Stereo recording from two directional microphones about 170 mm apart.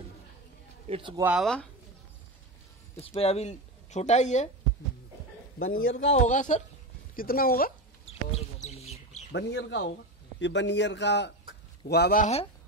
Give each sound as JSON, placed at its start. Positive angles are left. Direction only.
{"t": 0.8, "sound": "speech", "side_deg": -35}
{"t": 1.2, "sound": "speech", "side_deg": -5}
{"t": 3.0, "sound": "speech", "side_deg": 35}
{"t": 5.7, "sound": "speech", "side_deg": 60}
{"t": 6.1, "sound": "speech", "side_deg": 45}
{"t": 7.2, "sound": "speech", "side_deg": 60}
{"t": 8.0, "sound": "bird", "side_deg": 40}
{"t": 9.3, "sound": "a man's voice", "side_deg": 90}
{"t": 11.9, "sound": "speech", "side_deg": 70}
{"t": 12.2, "sound": "speech", "side_deg": 40}